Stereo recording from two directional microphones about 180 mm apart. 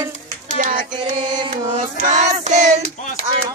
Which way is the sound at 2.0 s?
40° right (ahead or behind).